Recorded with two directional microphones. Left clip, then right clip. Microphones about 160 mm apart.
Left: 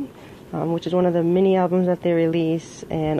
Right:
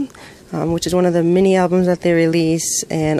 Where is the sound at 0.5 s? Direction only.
65° right (ahead or behind).